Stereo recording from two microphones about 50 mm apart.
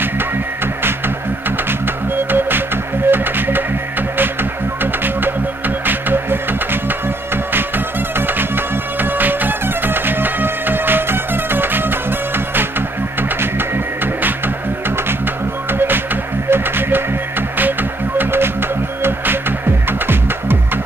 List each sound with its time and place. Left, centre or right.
3.1 s music: right
5.9 s music: right
9.0 s music: right
16.4 s music: right
19.9 s music: right